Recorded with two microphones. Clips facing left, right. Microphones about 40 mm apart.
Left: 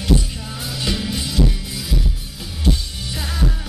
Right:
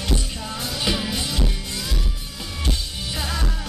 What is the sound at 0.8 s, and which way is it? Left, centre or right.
Music, centre.